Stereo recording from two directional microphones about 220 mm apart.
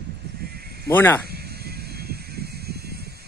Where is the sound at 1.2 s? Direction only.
45° right (ahead or behind).